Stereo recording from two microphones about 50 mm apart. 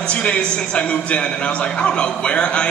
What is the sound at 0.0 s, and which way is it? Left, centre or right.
A man's voice, left.